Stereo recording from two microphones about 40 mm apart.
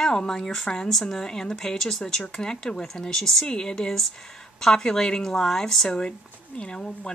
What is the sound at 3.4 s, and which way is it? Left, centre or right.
Speech, centre.